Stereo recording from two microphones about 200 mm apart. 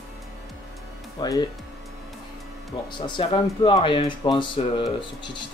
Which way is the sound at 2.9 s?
25° left (ahead or behind).